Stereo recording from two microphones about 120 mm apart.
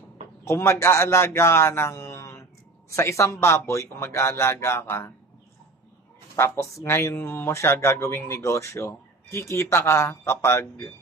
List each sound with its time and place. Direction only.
0.5 s a man's voice: 20° left (ahead or behind)
6.3 s a man's voice: 20° left (ahead or behind)